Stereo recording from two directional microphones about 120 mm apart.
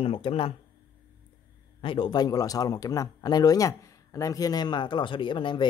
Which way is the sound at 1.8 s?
45° left (ahead or behind).